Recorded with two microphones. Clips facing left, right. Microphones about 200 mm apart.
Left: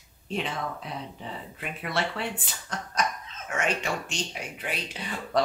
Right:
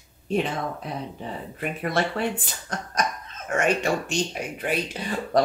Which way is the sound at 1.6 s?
45° right (ahead or behind).